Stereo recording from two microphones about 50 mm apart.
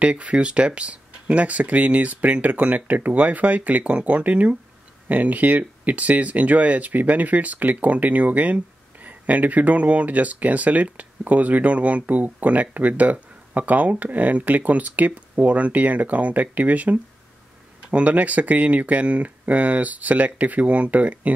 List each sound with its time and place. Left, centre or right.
0.0 s speech: right